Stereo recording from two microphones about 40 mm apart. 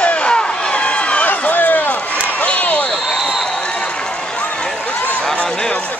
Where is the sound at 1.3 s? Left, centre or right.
Left.